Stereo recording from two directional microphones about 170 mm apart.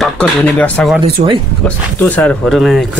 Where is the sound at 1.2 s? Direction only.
45° right (ahead or behind).